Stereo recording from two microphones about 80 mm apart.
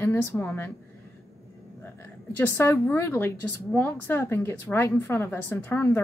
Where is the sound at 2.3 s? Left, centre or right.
Left.